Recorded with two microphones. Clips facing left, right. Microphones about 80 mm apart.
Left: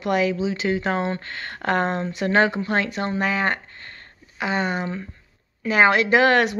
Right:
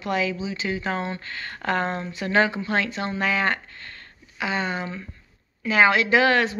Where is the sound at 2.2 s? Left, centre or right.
Left.